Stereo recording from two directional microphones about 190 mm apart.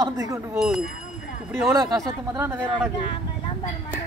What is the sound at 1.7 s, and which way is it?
Speech, 15° right (ahead or behind).